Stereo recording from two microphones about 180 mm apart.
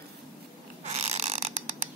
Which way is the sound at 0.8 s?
35° right (ahead or behind).